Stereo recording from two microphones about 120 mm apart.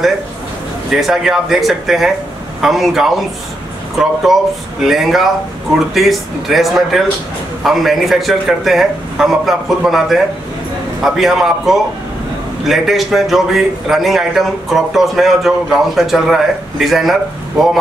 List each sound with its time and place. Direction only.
1.0 s a man's voice: centre (ahead or behind)
4.3 s a man's voice: centre (ahead or behind)